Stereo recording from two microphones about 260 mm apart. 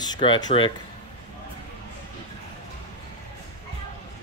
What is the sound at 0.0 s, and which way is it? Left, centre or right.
Speech, centre.